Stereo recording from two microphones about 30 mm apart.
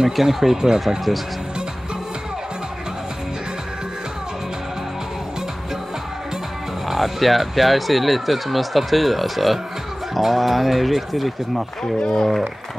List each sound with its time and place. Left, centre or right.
0.1 s speech: centre
6.9 s speech: centre
12.0 s speech: left